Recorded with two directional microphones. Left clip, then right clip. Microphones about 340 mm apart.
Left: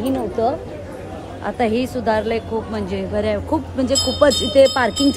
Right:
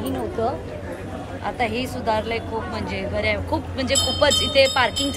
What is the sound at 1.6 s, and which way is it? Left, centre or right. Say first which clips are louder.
Speech: left 6 dB; left.